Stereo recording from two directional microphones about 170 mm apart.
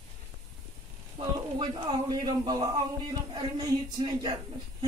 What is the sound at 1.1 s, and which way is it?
Speech, 30° right (ahead or behind).